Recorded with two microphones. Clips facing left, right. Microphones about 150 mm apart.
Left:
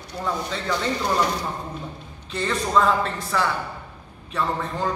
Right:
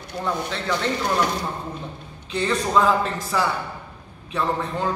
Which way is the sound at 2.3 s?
Centre (ahead or behind).